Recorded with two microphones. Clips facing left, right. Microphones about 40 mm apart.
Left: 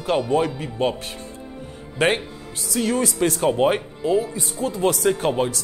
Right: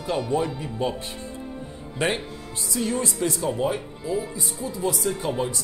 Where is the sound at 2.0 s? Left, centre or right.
Left.